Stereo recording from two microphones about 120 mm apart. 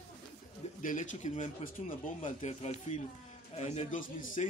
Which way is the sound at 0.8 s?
90° left.